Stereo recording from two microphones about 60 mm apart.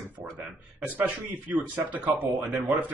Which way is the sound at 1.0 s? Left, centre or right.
Right.